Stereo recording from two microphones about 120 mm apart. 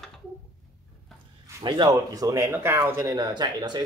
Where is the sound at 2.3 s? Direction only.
20° right (ahead or behind).